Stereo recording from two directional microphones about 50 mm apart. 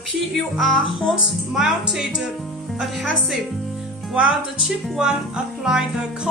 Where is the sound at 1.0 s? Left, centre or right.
Centre.